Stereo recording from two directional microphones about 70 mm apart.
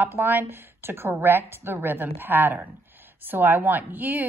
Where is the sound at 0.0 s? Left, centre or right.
Right.